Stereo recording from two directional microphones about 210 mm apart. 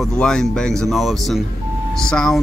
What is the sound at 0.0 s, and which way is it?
Speech, 5° left (ahead or behind).